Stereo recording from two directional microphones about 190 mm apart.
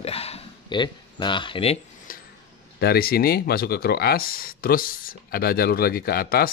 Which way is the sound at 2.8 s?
55° left (ahead or behind).